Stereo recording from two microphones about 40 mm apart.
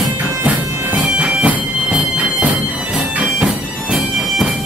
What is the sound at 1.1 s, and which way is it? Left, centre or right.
Bagpipes, right.